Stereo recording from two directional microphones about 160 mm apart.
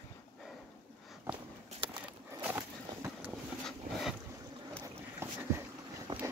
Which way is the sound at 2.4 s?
10° right (ahead or behind).